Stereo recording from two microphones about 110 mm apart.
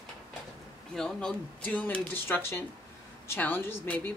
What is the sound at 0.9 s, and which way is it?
Speech, 5° left (ahead or behind).